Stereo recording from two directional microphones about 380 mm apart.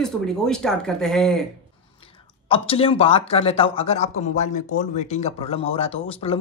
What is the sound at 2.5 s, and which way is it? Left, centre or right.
Speech, centre.